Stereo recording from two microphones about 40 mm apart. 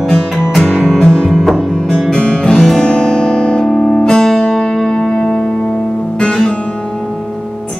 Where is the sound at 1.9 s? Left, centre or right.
Centre.